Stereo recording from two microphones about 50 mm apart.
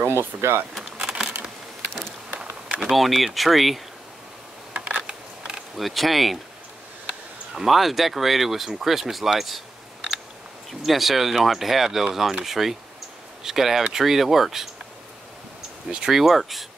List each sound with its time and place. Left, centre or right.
0.0 s speech: right
0.8 s a sound: centre
2.3 s a sound: right
2.9 s speech: centre
4.7 s mechanisms: centre
5.8 s speech: centre
7.5 s speech: centre
10.7 s speech: centre
16.1 s speech: centre